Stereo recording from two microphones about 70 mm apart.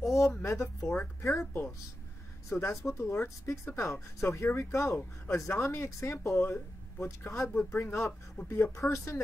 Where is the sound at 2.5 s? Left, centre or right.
Left.